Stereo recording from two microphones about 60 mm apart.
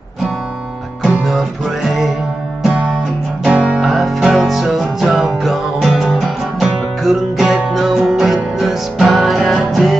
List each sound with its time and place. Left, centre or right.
1.0 s music: centre
3.4 s music: centre
3.8 s music: centre